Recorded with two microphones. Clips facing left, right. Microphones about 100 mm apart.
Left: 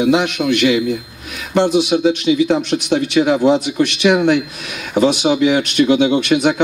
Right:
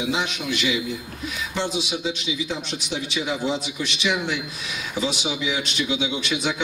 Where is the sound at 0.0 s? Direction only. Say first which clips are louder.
Left 11 dB; 60° left (ahead or behind).